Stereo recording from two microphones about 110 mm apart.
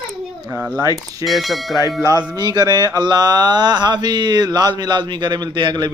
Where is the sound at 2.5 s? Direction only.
40° right (ahead or behind).